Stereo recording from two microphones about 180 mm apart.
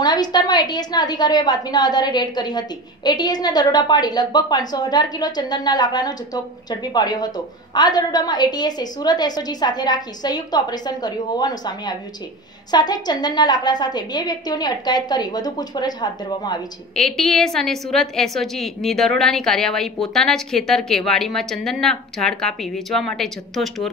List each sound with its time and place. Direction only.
0.0 s a woman's voice: 20° left (ahead or behind)
16.9 s a woman's voice: centre (ahead or behind)